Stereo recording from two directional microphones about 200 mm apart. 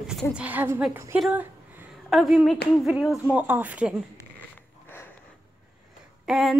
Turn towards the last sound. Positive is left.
turn(degrees=0)  # may be behind; listen again after turning